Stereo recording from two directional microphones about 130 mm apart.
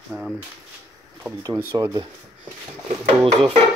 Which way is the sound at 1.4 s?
25° right (ahead or behind).